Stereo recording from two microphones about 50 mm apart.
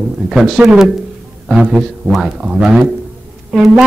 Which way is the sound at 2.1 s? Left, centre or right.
Centre.